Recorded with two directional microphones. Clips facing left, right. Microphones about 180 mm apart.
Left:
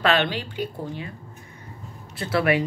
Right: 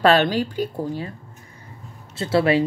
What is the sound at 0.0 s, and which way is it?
Speech, 40° right (ahead or behind).